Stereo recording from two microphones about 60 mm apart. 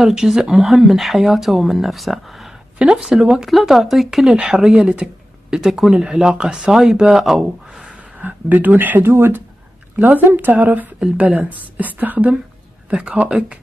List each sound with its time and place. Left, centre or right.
0.0 s speech: centre
2.8 s speech: centre
3.4 s speech: centre
8.2 s speech: right